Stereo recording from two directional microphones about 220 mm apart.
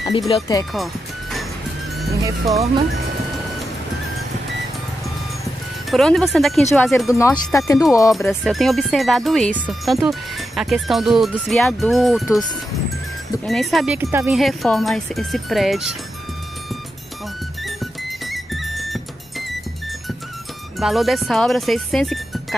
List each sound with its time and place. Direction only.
0.3 s speech: 15° left (ahead or behind)
2.4 s speech: 30° right (ahead or behind)
5.9 s speech: centre (ahead or behind)
8.3 s speech: centre (ahead or behind)
13.5 s speech: centre (ahead or behind)
18.2 s music: centre (ahead or behind)
20.8 s speech: centre (ahead or behind)